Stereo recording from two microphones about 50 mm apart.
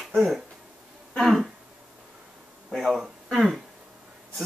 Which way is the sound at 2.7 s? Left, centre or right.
Centre.